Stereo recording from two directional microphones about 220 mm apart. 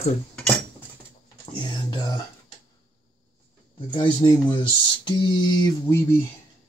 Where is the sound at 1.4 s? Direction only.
20° left (ahead or behind).